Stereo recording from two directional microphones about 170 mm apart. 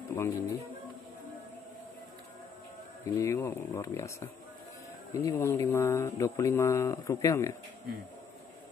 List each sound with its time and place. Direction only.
0.1 s speech: 15° left (ahead or behind)
3.2 s speech: 15° left (ahead or behind)